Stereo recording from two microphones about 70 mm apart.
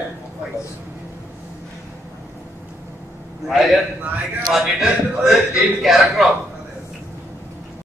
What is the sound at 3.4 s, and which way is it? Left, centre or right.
A man's voice, centre.